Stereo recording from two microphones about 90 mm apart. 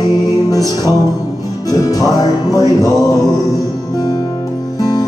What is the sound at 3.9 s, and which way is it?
Music, 45° left (ahead or behind).